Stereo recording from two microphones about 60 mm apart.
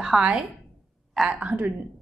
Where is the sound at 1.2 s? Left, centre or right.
Right.